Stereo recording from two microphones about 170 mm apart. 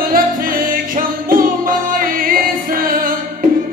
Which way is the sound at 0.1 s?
55° right (ahead or behind).